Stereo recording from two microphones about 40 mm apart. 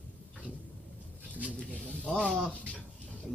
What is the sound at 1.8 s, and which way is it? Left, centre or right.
Speech, left.